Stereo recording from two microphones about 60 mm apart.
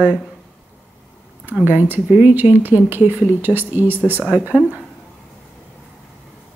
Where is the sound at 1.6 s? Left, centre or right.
Right.